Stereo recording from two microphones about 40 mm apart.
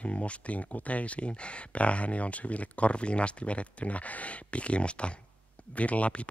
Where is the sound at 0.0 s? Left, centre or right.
Left.